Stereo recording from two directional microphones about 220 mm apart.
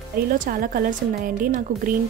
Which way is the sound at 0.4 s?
40° right (ahead or behind).